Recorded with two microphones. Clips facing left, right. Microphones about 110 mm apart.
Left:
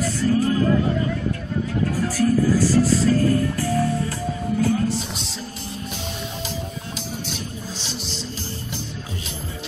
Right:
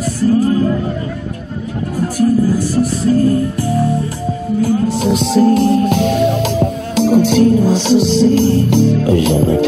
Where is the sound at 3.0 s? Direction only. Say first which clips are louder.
Right 6 dB; 25° right (ahead or behind).